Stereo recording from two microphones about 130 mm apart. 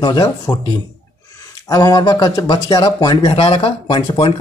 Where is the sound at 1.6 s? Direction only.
30° left (ahead or behind).